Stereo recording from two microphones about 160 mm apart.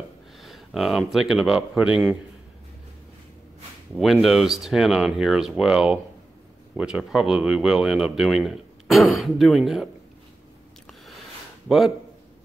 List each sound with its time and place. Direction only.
0.4 s speech: centre (ahead or behind)
3.9 s speech: centre (ahead or behind)